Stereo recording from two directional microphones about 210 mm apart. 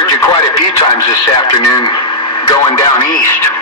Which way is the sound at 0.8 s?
20° left (ahead or behind).